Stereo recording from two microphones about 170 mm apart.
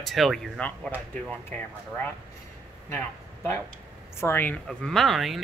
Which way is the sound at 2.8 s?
15° left (ahead or behind).